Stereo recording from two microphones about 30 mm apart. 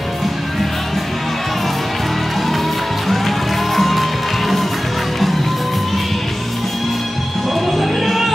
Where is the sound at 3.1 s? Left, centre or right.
Centre.